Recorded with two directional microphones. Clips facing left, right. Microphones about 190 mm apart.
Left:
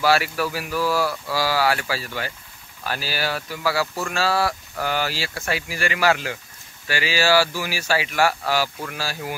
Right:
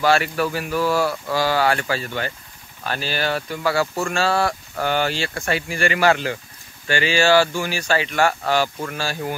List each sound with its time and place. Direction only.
0.0 s speech: 5° left (ahead or behind)
0.7 s speech: 25° right (ahead or behind)
1.3 s speech: 5° left (ahead or behind)